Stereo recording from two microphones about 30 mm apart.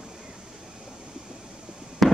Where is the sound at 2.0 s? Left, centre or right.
Centre.